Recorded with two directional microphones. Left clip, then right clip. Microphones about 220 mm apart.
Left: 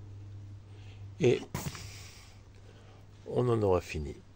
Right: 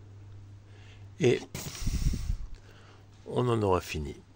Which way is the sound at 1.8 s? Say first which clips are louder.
Right 8 dB; 10° right (ahead or behind).